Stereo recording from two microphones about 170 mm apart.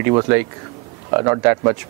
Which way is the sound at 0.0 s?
20° right (ahead or behind).